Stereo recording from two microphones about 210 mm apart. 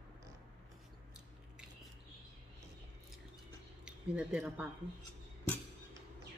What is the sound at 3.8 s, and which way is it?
Speech, 5° right (ahead or behind).